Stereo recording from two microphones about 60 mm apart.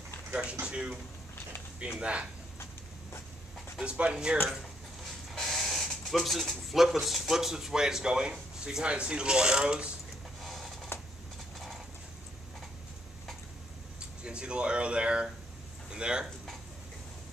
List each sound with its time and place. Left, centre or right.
0.3 s speech: centre
2.0 s speech: centre
3.8 s speech: centre
5.3 s speech: centre
10.4 s a sound: centre
14.2 s speech: centre